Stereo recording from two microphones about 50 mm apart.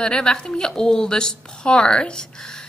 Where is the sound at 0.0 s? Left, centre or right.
Centre.